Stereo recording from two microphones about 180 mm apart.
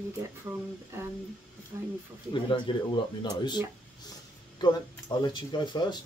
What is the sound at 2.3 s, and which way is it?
Speech, 25° left (ahead or behind).